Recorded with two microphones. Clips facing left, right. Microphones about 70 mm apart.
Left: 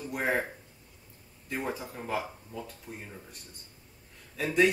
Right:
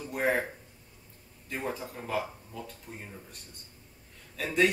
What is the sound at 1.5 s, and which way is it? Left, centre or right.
Speech, centre.